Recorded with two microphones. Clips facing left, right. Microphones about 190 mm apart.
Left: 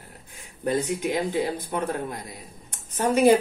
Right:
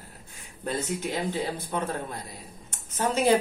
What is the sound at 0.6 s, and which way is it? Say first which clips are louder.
Speech: left 5 dB; 15° left (ahead or behind).